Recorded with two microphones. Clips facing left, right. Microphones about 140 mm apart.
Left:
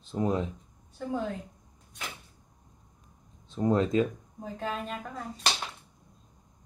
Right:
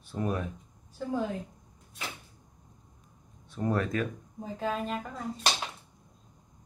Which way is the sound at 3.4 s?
20° left (ahead or behind).